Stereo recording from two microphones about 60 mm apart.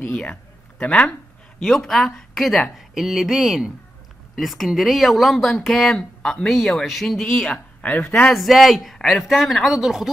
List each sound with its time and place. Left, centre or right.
0.1 s speech: centre
1.6 s speech: centre
7.2 s speech: centre